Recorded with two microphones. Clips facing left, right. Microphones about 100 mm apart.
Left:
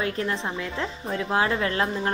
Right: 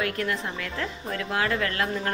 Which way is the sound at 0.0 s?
25° left (ahead or behind).